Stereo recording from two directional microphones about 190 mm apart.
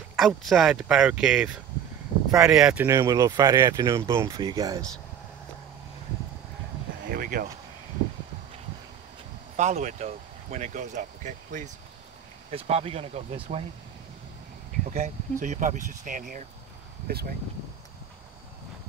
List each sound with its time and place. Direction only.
0.2 s speech: centre (ahead or behind); by 4.8 s 20° right (ahead or behind)
7.1 s speech: 50° right (ahead or behind)
9.6 s speech: 40° right (ahead or behind)
14.9 s speech: 40° right (ahead or behind)